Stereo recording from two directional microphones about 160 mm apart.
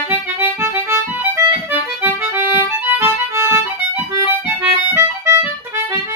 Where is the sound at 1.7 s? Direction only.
15° right (ahead or behind).